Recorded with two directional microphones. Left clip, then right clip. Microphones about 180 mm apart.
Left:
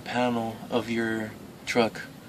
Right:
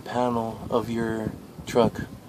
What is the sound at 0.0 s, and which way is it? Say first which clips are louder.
Speech: right 2 dB; 25° right (ahead or behind).